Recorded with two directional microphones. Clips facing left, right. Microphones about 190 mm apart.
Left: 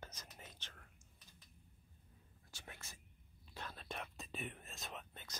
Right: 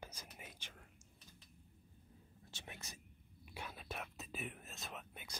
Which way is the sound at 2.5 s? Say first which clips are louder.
Right 2 dB; 20° right (ahead or behind).